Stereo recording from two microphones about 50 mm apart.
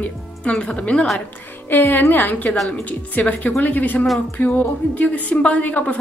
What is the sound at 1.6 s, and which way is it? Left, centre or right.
A woman's voice, left.